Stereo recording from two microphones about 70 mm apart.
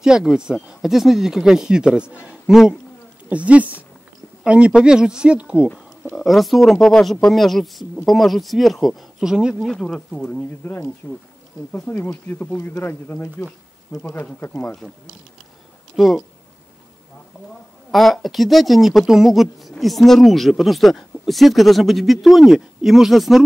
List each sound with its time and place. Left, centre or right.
0.0 s speech: centre
3.3 s speech: centre
6.1 s speech: centre
9.2 s speech: centre
9.6 s speech: centre
10.6 s speech: left
16.0 s speech: centre
17.9 s speech: centre